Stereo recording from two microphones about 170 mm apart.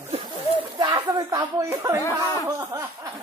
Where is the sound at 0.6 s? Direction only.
25° right (ahead or behind).